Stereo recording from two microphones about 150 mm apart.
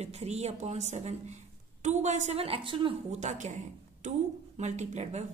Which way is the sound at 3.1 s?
50° right (ahead or behind).